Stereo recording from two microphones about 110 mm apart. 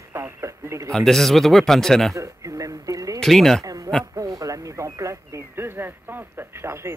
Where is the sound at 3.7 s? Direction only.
30° right (ahead or behind).